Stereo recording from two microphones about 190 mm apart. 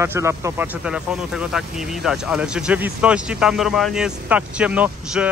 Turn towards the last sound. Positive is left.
turn(degrees=-5)  # may be behind; listen again after turning